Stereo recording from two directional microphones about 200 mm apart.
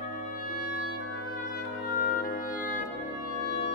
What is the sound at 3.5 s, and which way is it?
Music, 55° left (ahead or behind).